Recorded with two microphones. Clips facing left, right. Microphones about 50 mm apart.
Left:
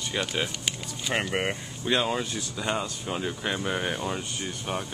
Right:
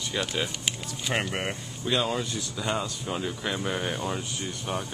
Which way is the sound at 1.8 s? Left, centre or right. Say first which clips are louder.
Left 1 dB; centre.